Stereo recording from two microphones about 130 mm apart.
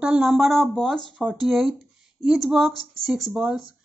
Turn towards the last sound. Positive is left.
turn(degrees=0)  # may be behind; listen again after turning